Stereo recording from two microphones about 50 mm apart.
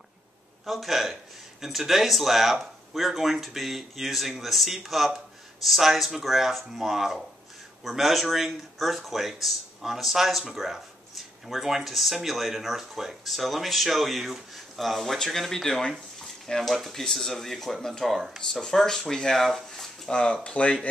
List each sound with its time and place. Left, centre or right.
0.7 s speech: centre
20.1 s speech: centre